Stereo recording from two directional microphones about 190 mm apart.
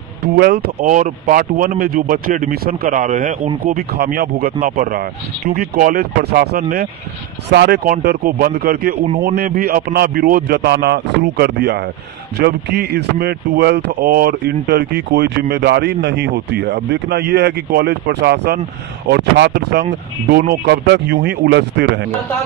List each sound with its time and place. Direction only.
0.2 s speech: 55° right (ahead or behind)
9.0 s a man's voice: 35° right (ahead or behind)
9.3 s speech: 55° right (ahead or behind)